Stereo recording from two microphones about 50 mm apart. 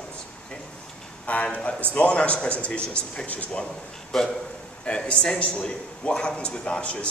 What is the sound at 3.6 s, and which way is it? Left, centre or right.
Speech, centre.